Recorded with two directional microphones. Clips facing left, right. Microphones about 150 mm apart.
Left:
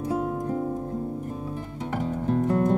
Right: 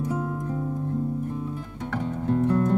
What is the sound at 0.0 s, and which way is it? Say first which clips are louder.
Music: left 2 dB; 20° left (ahead or behind).